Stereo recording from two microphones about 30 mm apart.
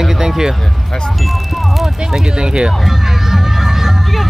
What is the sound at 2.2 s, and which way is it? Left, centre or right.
Speech, right.